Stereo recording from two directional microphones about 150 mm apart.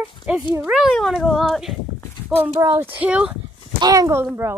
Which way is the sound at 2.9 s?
10° right (ahead or behind).